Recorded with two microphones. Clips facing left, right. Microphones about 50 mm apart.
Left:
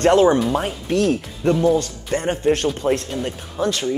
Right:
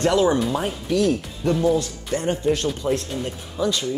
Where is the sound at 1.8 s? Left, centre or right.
Left.